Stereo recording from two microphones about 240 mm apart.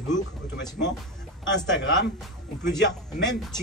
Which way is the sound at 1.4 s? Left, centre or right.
Left.